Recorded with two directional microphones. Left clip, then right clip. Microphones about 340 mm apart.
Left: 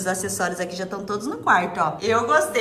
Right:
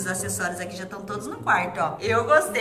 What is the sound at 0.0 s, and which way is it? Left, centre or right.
A woman's voice, centre.